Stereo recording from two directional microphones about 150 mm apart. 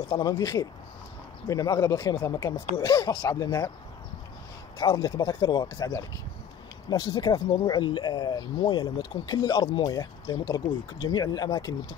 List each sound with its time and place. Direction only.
0.1 s speech: 25° left (ahead or behind)
4.7 s speech: 25° left (ahead or behind)